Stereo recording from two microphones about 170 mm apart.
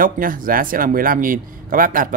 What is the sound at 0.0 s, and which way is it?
Speech, 55° right (ahead or behind).